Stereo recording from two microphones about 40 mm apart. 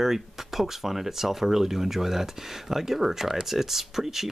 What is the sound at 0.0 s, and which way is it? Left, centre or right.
Speech, centre.